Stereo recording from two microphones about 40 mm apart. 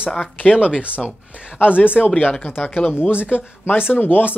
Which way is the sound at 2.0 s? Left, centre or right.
Centre.